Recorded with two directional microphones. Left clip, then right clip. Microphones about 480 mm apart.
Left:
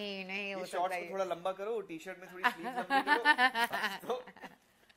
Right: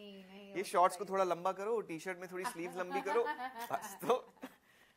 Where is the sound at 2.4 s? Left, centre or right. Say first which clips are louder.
Left 9 dB; left.